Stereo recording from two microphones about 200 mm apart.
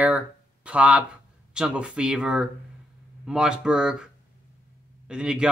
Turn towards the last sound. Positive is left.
turn(degrees=-5)  # may be behind; listen again after turning